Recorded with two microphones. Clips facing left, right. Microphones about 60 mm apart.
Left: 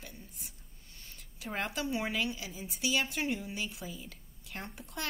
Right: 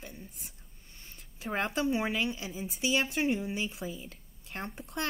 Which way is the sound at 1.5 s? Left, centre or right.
Right.